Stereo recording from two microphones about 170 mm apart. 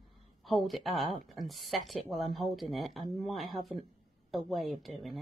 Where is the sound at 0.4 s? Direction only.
Centre (ahead or behind).